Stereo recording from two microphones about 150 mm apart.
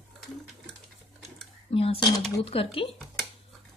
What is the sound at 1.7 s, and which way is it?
Speech, 40° left (ahead or behind).